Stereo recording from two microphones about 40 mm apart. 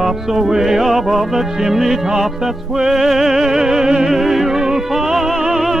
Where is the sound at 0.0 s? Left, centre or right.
Centre.